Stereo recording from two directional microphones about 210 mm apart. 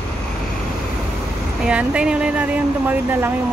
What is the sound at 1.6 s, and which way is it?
Speech, 5° right (ahead or behind).